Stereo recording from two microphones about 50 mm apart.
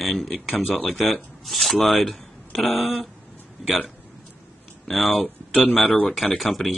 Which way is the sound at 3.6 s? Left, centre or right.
Centre.